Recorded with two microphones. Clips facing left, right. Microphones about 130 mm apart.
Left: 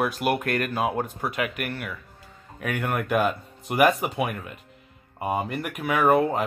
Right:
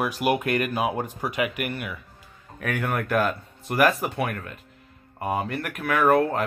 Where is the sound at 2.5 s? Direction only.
5° left (ahead or behind).